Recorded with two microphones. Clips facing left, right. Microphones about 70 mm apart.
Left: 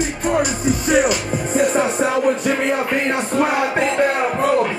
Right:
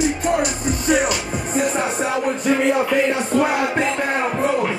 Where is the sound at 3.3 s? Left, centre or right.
Left.